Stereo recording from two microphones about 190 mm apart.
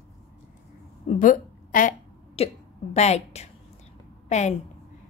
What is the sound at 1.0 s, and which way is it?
Speech, 45° left (ahead or behind).